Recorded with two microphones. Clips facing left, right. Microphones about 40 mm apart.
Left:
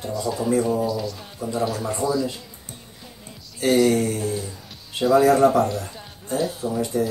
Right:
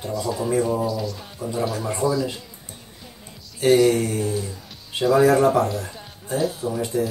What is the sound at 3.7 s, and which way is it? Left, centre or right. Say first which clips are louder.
Speech: right 2 dB; centre.